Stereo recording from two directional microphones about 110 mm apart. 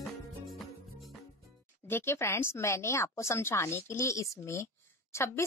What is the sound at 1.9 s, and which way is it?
A woman's voice, 25° left (ahead or behind).